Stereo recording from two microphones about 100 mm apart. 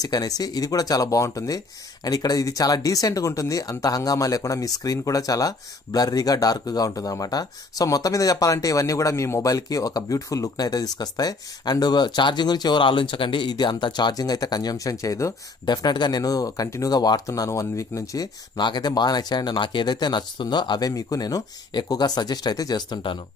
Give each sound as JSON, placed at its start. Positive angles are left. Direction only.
{"t": 0.0, "sound": "speech", "side_deg": 40}
{"t": 15.6, "sound": "speech", "side_deg": 45}